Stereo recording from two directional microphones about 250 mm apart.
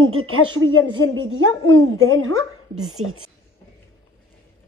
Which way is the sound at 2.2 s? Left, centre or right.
Right.